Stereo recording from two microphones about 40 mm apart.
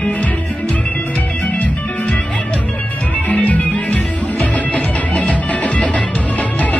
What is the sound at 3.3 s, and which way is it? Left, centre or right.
Music, left.